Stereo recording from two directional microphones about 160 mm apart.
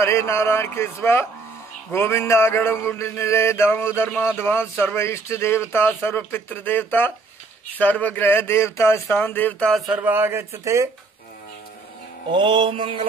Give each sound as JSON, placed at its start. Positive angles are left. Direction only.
{"t": 0.0, "sound": "mantra", "side_deg": 15}
{"t": 9.0, "sound": "speech", "side_deg": 10}
{"t": 12.3, "sound": "mantra", "side_deg": -30}